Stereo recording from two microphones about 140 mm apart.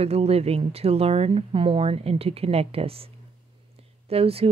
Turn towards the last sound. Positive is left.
turn(degrees=-45)  # may be behind; listen again after turning